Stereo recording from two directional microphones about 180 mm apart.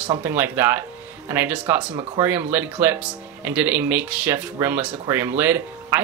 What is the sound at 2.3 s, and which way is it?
Speech, 10° right (ahead or behind).